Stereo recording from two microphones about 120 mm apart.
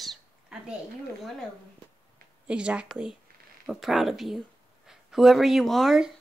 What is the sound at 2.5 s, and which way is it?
Speech, 10° right (ahead or behind).